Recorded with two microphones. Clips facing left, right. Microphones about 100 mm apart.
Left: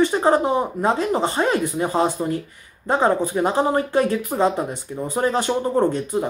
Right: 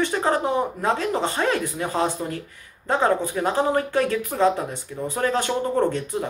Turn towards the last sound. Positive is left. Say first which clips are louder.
# left 3 dB
turn(degrees=15)  # may be behind; listen again after turning